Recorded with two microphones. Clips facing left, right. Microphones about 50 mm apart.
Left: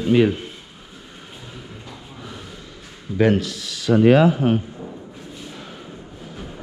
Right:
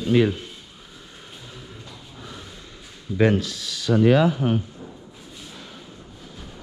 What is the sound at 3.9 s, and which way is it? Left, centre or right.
Speech, left.